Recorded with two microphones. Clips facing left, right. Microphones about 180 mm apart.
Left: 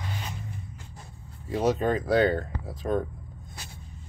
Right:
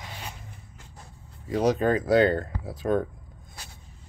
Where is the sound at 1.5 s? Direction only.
5° left (ahead or behind).